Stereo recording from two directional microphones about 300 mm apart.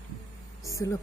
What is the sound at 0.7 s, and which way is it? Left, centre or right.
Speech, centre.